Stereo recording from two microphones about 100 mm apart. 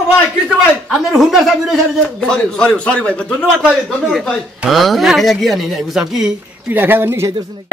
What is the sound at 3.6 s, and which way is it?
Speech, centre (ahead or behind).